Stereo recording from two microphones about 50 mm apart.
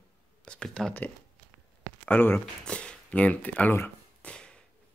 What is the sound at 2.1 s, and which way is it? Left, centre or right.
Speech, left.